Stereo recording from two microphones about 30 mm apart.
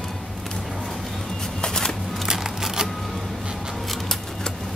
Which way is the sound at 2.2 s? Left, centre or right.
Centre.